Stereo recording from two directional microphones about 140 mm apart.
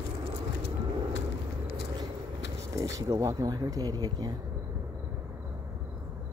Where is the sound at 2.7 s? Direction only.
25° right (ahead or behind).